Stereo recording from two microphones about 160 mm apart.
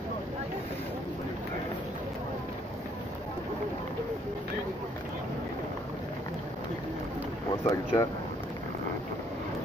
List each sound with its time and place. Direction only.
7.6 s speech: 20° left (ahead or behind)